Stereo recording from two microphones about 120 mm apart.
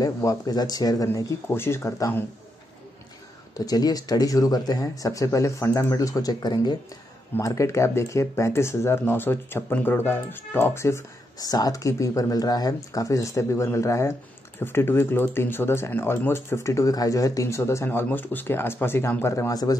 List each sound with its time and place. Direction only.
0.0 s speech: 30° left (ahead or behind)
3.5 s speech: 30° left (ahead or behind)
7.3 s speech: 25° left (ahead or behind)